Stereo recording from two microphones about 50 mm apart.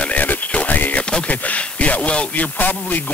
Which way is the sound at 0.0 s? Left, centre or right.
Left.